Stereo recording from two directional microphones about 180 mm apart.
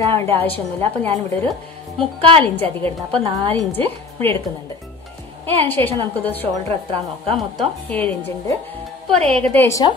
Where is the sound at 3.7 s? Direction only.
10° left (ahead or behind).